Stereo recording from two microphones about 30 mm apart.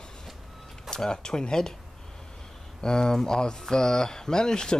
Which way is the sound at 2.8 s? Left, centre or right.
Left.